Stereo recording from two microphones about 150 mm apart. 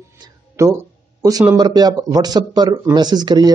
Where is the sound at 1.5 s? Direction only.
25° right (ahead or behind).